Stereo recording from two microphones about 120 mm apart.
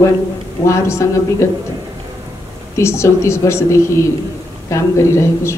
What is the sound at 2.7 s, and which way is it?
A man's voice, 25° left (ahead or behind).